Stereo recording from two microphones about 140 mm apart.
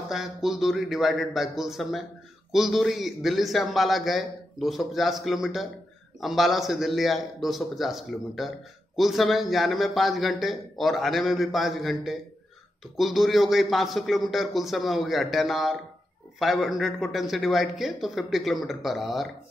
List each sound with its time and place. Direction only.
0.1 s a man's voice: 5° right (ahead or behind)